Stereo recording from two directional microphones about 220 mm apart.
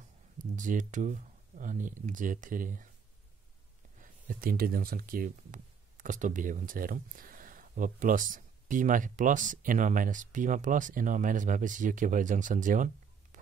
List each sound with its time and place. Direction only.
0.4 s speech: 35° right (ahead or behind)
4.0 s speech: 40° right (ahead or behind)